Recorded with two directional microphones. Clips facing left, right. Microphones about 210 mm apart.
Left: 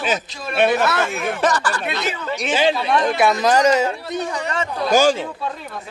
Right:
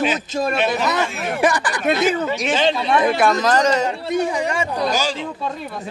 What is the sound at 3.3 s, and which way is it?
Speech, 10° left (ahead or behind).